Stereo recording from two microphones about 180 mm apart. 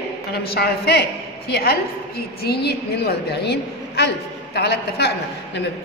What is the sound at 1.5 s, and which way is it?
A woman's voice, 60° left (ahead or behind).